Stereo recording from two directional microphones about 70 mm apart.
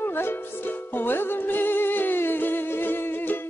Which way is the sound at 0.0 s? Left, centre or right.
Left.